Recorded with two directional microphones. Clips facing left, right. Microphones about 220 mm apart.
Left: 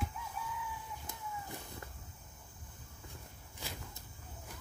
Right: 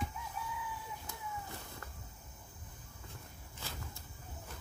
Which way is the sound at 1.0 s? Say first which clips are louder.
Left 1 dB; 20° left (ahead or behind).